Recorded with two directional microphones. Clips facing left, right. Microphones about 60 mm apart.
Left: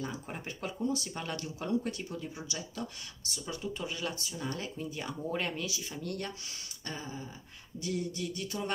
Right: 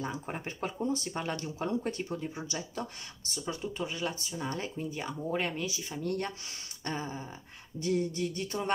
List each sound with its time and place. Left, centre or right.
0.0 s speech: right
3.4 s speech: right
5.2 s speech: centre
5.7 s speech: right